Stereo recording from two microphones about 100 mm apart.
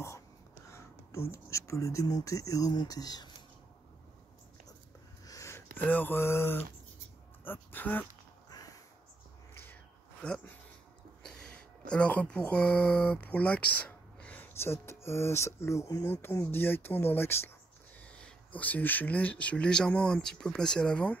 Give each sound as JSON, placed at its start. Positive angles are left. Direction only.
{"t": 0.7, "sound": "speech", "side_deg": 25}
{"t": 5.2, "sound": "a sound", "side_deg": 30}
{"t": 7.4, "sound": "speech", "side_deg": 20}
{"t": 8.5, "sound": "crow", "side_deg": 40}
{"t": 9.5, "sound": "a sound", "side_deg": 20}
{"t": 10.2, "sound": "speech", "side_deg": 10}
{"t": 18.0, "sound": "speech", "side_deg": 10}